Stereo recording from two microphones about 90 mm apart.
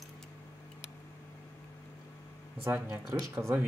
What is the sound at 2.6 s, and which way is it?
Speech, 30° right (ahead or behind).